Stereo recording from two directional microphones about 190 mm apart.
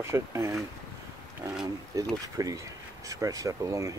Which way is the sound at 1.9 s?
15° right (ahead or behind).